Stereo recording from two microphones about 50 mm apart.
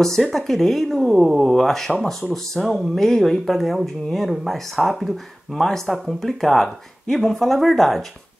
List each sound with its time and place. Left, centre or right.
0.0 s speech: centre